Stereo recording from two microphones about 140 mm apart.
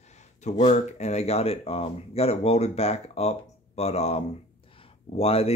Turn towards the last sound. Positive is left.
turn(degrees=45)  # may be behind; listen again after turning